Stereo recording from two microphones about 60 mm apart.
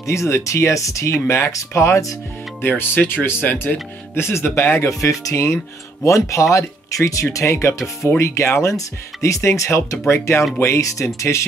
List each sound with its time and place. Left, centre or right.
0.0 s speech: left
1.2 s speech: left
2.6 s speech: left
4.1 s speech: left